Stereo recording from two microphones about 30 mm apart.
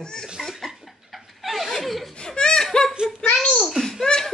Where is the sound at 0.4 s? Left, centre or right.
Centre.